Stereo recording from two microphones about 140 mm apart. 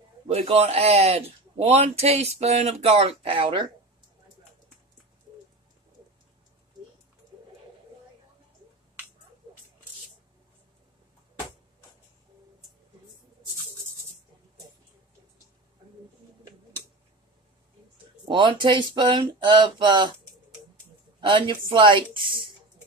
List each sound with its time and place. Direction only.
0.3 s a man's voice: 45° right (ahead or behind)
18.2 s speech: 35° right (ahead or behind)
21.2 s speech: 35° right (ahead or behind)